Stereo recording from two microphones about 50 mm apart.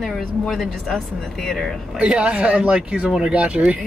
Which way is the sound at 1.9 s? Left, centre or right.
Right.